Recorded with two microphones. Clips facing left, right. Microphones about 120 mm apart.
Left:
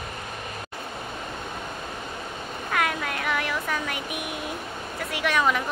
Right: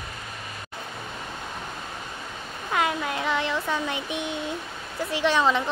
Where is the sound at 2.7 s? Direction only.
25° right (ahead or behind).